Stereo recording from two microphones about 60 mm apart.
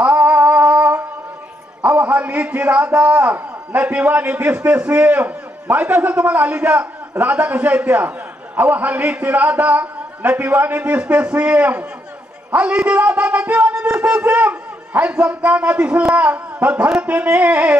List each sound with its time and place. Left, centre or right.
0.0 s music: right
1.8 s a man's voice: right